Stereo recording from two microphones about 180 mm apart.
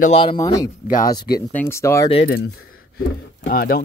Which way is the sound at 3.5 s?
55° left (ahead or behind).